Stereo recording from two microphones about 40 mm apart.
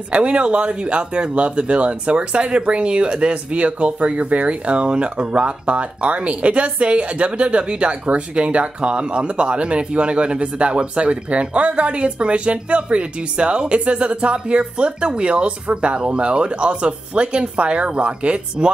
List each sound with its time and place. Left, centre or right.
0.1 s speech: right